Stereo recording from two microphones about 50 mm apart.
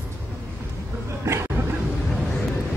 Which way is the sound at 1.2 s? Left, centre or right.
Right.